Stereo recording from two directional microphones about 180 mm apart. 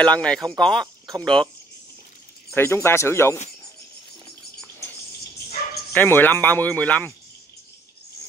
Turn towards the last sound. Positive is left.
turn(degrees=10)  # may be behind; listen again after turning